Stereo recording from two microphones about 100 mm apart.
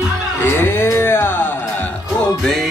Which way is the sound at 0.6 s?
25° left (ahead or behind).